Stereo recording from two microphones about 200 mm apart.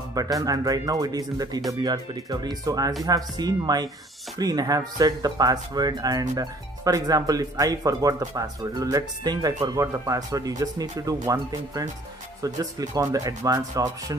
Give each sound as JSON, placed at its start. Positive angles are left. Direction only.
{"t": 0.1, "sound": "speech", "side_deg": -15}